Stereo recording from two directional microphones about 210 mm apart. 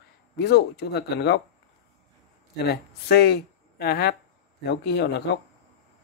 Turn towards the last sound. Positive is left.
turn(degrees=55)  # may be behind; listen again after turning